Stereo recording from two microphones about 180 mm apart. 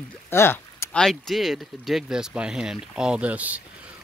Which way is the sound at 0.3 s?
15° left (ahead or behind).